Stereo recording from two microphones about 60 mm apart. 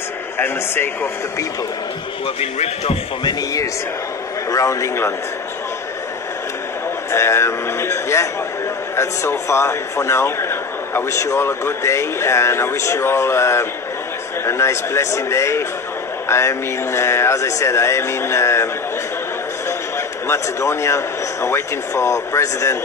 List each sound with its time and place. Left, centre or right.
4.5 s a man's voice: left
7.1 s speech: left
11.1 s speech: left
20.2 s speech: left